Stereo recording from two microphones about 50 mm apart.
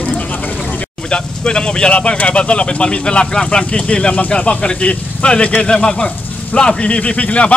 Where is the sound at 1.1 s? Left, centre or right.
Centre.